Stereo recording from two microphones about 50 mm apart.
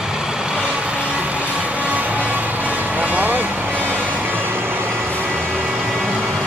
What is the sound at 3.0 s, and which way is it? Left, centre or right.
Music, right.